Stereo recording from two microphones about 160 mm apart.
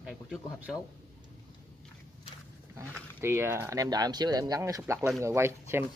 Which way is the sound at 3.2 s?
15° right (ahead or behind).